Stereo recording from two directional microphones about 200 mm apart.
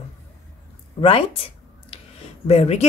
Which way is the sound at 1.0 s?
30° left (ahead or behind).